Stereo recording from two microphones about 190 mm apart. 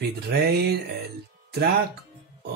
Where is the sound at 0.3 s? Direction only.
60° right (ahead or behind).